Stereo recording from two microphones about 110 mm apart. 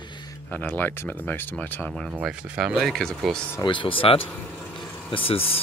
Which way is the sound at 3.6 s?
50° left (ahead or behind).